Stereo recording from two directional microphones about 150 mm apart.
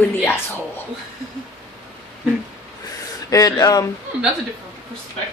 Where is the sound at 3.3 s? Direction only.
25° left (ahead or behind).